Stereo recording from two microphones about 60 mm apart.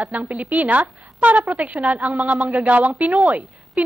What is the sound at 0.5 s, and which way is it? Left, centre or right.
Speech, right.